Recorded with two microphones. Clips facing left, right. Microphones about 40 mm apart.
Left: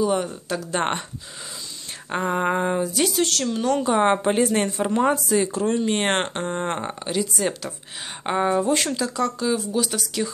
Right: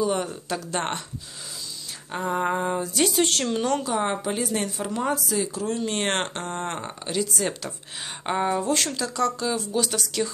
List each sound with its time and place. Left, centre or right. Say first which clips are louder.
0.0 s speech: left 3 dB; centre
0.7 s speech: left 5 dB; left
2.0 s speech: left 3 dB; left
2.8 s speech: left 1 dB; centre
3.2 s speech: even; centre
3.8 s a woman's voice: left 6 dB; left
4.7 s speech: left 6 dB; left
5.8 s speech: left 2 dB; centre
7.1 s speech: left 2 dB; centre